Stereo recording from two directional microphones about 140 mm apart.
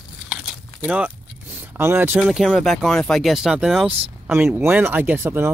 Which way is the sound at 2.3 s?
Centre (ahead or behind).